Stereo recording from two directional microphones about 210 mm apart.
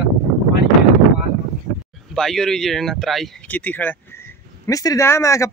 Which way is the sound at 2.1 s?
Centre (ahead or behind).